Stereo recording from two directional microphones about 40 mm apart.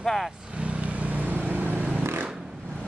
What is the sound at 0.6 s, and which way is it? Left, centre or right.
Vehicle, right.